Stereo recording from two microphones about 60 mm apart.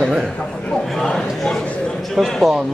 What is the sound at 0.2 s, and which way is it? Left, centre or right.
Speech, centre.